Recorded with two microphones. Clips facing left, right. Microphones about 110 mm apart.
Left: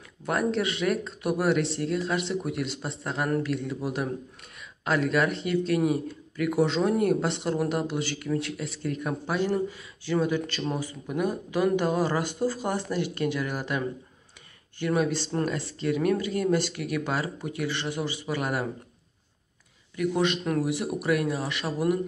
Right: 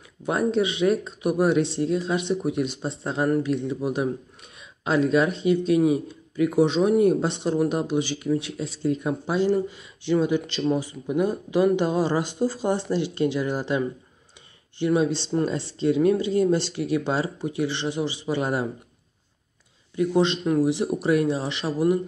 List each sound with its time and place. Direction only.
0.2 s a man's voice: 20° right (ahead or behind)
20.0 s speech: 25° right (ahead or behind)